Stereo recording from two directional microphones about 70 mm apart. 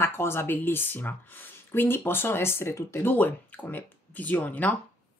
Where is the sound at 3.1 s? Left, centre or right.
Left.